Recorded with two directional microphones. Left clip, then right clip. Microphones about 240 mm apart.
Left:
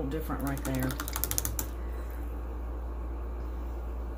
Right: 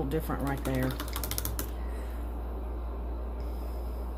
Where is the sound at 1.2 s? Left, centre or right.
Left.